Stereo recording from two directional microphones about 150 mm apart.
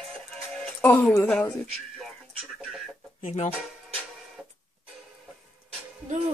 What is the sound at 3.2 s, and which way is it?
Speech, 50° left (ahead or behind).